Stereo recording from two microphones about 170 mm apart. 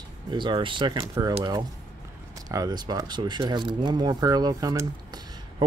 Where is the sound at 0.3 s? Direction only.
30° right (ahead or behind).